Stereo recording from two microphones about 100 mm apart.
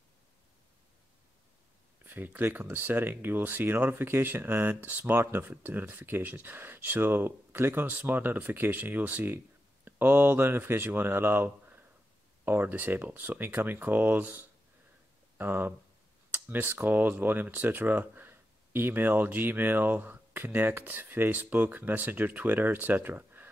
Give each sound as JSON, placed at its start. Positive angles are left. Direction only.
{"t": 2.0, "sound": "speech", "side_deg": -20}